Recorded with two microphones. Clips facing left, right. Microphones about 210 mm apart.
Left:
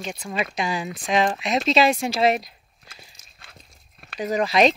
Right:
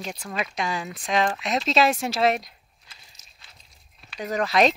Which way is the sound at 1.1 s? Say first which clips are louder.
Left 2 dB; 20° left (ahead or behind).